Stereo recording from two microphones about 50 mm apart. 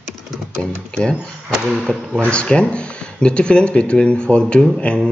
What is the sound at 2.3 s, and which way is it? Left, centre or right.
Speech, left.